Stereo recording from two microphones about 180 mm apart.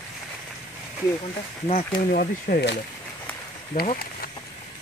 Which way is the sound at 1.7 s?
50° left (ahead or behind).